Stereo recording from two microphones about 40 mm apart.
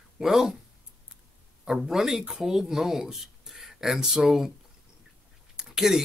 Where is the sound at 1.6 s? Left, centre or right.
Centre.